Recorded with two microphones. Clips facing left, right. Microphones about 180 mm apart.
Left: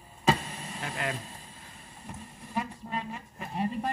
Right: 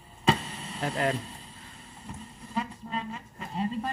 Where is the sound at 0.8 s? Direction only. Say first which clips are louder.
Right 7 dB; 40° right (ahead or behind).